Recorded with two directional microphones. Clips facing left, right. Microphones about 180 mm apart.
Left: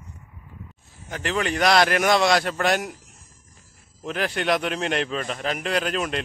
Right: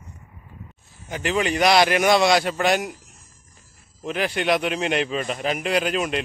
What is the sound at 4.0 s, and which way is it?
A man's voice, 5° right (ahead or behind).